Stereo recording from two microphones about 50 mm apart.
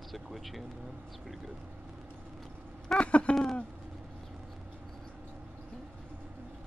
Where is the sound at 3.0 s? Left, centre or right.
Left.